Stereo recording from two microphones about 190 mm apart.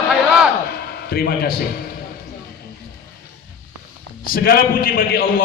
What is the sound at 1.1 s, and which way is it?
Speech, 55° left (ahead or behind).